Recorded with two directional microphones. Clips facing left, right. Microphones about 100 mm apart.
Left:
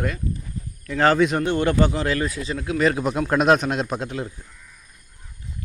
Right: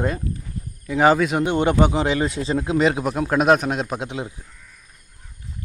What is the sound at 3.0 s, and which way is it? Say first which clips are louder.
A man's voice: right 1 dB; 5° right (ahead or behind).